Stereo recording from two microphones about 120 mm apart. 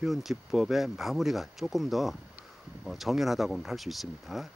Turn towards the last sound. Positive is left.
turn(degrees=0)  # may be behind; listen again after turning